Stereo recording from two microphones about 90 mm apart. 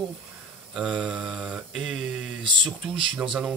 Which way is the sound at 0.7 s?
15° right (ahead or behind).